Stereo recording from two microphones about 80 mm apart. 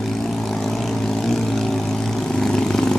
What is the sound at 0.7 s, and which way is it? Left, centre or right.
Vehicle, centre.